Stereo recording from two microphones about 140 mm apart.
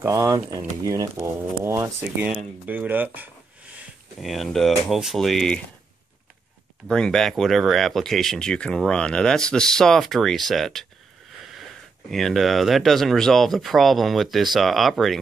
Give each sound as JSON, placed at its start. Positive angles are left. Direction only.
{"t": 0.0, "sound": "speech", "side_deg": -20}
{"t": 3.7, "sound": "speech", "side_deg": 0}
{"t": 6.9, "sound": "speech", "side_deg": 5}
{"t": 12.1, "sound": "speech", "side_deg": 0}